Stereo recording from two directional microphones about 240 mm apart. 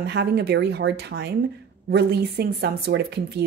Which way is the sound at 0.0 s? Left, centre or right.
Right.